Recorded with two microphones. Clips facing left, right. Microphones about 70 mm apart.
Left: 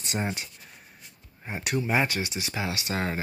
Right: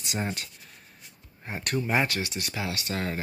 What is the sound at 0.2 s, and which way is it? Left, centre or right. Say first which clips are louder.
Speech: even; centre.